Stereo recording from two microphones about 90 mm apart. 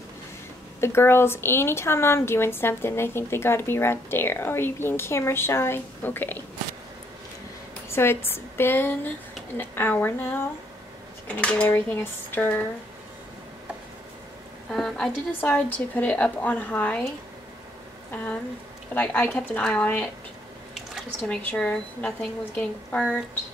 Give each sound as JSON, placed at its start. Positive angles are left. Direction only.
{"t": 0.7, "sound": "a woman's voice", "side_deg": 30}
{"t": 7.9, "sound": "a woman's voice", "side_deg": 25}
{"t": 11.7, "sound": "a woman's voice", "side_deg": 25}
{"t": 14.7, "sound": "a woman's voice", "side_deg": 5}
{"t": 18.1, "sound": "a woman's voice", "side_deg": 15}
{"t": 20.7, "sound": "drip", "side_deg": 0}
{"t": 21.3, "sound": "a woman's voice", "side_deg": 10}